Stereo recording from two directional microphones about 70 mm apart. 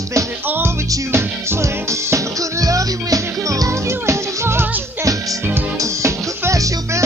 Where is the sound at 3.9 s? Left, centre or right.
Right.